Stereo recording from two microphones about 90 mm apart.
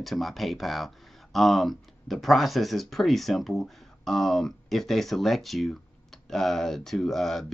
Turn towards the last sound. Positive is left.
turn(degrees=0)  # may be behind; listen again after turning